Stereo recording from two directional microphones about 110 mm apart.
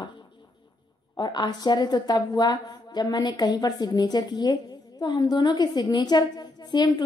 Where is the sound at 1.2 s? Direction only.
40° left (ahead or behind).